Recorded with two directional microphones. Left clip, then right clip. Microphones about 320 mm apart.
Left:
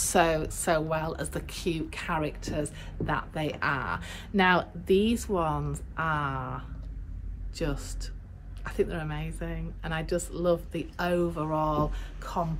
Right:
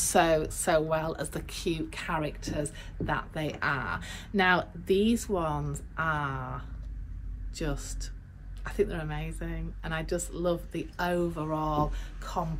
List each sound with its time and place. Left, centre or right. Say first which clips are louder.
0.0 s a woman's voice: even; centre